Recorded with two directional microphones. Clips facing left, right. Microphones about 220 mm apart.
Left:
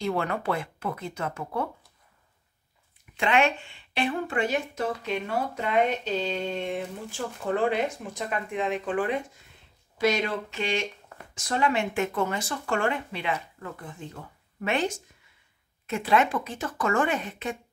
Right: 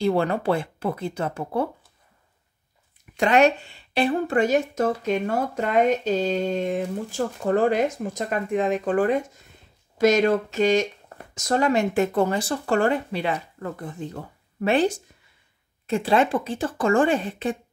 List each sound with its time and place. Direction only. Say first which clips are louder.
0.0 s speech: right 6 dB; 30° right (ahead or behind)
3.2 s speech: right 6 dB; 40° right (ahead or behind)